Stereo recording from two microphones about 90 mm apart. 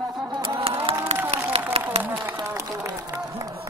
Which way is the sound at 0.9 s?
25° right (ahead or behind).